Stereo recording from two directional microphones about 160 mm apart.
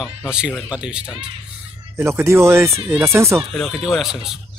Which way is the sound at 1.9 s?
15° right (ahead or behind).